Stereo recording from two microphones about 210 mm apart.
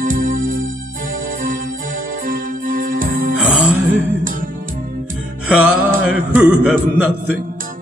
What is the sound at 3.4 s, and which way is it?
Music, 5° right (ahead or behind).